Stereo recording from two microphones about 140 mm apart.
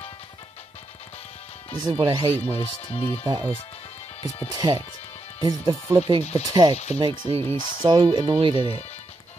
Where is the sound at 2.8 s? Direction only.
45° left (ahead or behind).